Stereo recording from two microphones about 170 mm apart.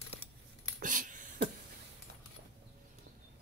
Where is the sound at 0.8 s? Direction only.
50° right (ahead or behind).